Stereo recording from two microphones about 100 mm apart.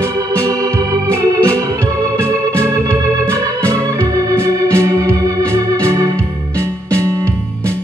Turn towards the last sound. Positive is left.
turn(degrees=-30)  # may be behind; listen again after turning